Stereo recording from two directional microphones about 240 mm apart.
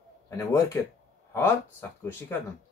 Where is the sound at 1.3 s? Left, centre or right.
Centre.